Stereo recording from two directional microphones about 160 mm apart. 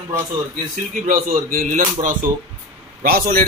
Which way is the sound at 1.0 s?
55° right (ahead or behind).